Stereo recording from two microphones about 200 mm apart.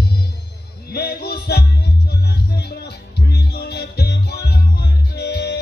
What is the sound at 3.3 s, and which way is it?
Music, 55° left (ahead or behind).